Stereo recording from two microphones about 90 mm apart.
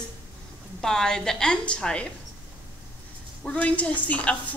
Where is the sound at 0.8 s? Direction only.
5° left (ahead or behind).